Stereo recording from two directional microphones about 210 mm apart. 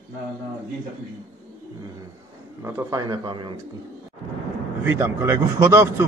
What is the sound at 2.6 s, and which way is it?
Speech, 15° right (ahead or behind).